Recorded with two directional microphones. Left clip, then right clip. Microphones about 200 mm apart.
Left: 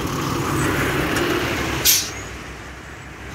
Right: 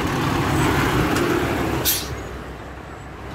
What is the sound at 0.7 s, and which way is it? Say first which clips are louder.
Vehicle: right 1 dB; 55° right (ahead or behind).